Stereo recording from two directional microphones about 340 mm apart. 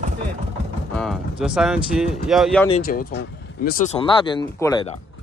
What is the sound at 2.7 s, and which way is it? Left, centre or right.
Speech, left.